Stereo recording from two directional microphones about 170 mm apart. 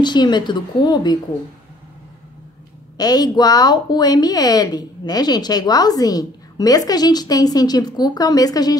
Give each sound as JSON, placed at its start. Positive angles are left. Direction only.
{"t": 0.0, "sound": "a woman's voice", "side_deg": 25}
{"t": 3.0, "sound": "a woman's voice", "side_deg": 20}